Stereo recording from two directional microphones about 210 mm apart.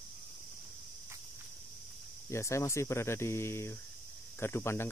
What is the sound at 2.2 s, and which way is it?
Speech, 15° left (ahead or behind).